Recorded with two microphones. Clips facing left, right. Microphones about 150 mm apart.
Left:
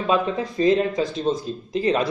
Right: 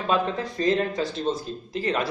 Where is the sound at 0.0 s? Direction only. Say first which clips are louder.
Left 3 dB; 15° left (ahead or behind).